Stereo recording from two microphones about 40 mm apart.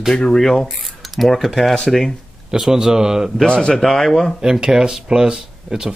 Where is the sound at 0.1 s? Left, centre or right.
Centre.